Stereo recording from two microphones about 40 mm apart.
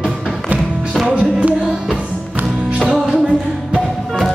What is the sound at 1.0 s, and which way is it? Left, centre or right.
Music, right.